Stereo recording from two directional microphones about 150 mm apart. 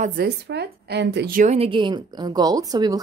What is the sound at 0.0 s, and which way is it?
Speech, 80° right.